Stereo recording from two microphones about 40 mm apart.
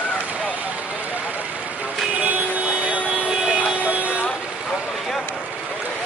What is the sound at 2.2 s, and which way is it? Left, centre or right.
Vehicle, right.